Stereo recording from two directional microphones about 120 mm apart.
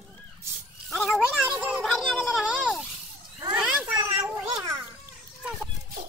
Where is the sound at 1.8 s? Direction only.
Centre (ahead or behind).